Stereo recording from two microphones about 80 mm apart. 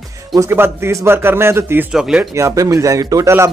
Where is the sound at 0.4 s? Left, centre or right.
Right.